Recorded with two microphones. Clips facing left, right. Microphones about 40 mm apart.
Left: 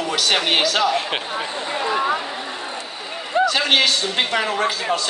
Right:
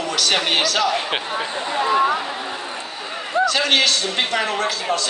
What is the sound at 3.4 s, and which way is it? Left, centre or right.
A man's voice, centre.